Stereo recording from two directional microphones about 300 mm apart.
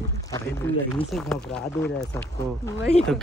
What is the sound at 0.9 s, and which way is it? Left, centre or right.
Speech, centre.